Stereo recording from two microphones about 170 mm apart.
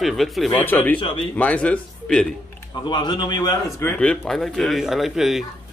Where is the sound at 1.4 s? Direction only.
10° left (ahead or behind).